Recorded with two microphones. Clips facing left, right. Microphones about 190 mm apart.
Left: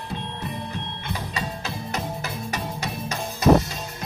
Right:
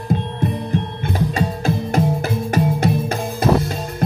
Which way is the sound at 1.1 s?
50° right (ahead or behind).